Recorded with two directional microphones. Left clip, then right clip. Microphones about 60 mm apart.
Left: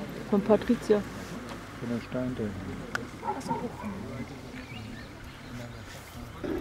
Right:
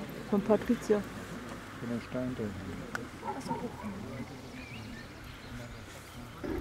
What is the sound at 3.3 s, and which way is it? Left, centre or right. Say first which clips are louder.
Speech: left 4 dB; centre.